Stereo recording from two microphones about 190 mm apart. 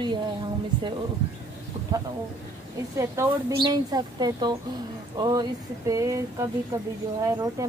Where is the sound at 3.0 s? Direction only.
15° right (ahead or behind).